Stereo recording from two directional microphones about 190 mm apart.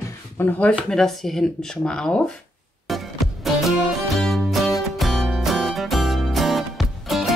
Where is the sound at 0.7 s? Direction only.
Centre (ahead or behind).